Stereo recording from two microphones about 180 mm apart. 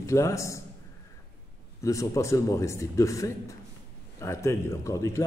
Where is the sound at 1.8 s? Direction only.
15° left (ahead or behind).